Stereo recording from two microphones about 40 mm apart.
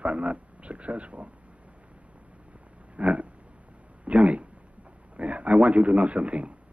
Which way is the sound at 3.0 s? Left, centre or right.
Right.